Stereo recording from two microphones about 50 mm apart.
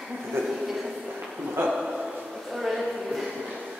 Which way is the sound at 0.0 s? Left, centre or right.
Centre.